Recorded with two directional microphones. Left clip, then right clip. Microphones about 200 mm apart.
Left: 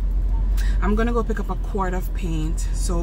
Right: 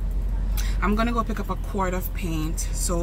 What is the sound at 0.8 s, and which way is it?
Speech, 10° right (ahead or behind).